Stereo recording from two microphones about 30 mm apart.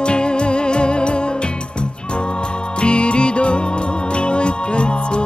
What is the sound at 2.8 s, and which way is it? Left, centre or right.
Music, left.